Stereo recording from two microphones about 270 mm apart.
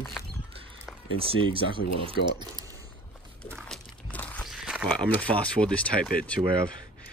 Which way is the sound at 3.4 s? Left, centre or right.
Centre.